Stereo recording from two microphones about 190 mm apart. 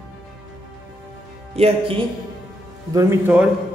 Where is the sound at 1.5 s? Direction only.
30° right (ahead or behind).